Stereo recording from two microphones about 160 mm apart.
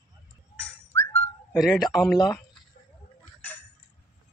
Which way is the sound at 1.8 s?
25° left (ahead or behind).